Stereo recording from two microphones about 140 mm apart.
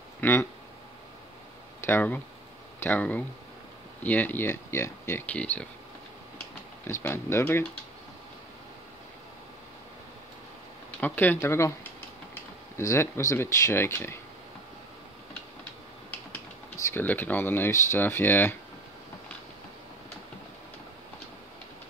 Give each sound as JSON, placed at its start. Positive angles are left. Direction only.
{"t": 0.2, "sound": "speech", "side_deg": 15}
{"t": 1.9, "sound": "speech", "side_deg": 15}
{"t": 6.9, "sound": "speech", "side_deg": 20}
{"t": 11.0, "sound": "speech", "side_deg": 15}
{"t": 12.7, "sound": "speech", "side_deg": 20}
{"t": 16.9, "sound": "speech", "side_deg": 15}